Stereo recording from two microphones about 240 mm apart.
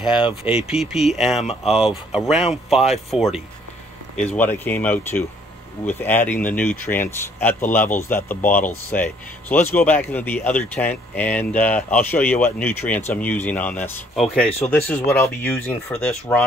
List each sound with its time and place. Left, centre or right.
0.4 s speech: centre
1.4 s speech: left
1.7 s speech: centre